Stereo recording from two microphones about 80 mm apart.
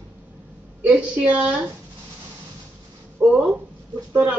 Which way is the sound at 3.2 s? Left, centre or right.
Centre.